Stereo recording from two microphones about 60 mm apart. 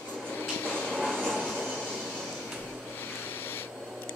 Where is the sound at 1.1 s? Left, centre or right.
Centre.